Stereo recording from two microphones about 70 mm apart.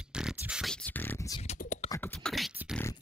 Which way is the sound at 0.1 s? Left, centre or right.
Centre.